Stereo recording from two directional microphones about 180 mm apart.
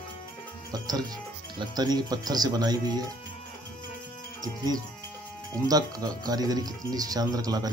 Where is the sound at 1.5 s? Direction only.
20° right (ahead or behind).